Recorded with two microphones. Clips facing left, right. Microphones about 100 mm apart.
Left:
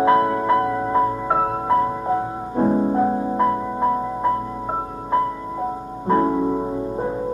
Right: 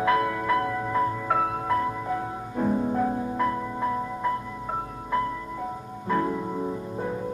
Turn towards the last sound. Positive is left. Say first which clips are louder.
# left 6 dB
turn(degrees=30)  # may be behind; listen again after turning